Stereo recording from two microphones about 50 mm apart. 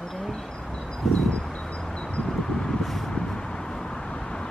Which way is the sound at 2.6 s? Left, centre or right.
Centre.